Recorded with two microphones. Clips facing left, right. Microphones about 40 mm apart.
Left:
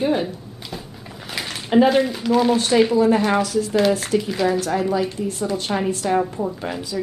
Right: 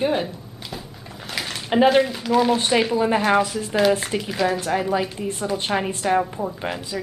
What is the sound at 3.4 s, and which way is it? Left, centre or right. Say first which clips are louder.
Speech: left 6 dB; right.